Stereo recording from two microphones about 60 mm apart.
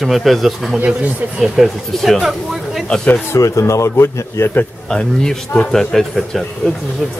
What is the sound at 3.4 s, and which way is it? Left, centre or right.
Speech, left.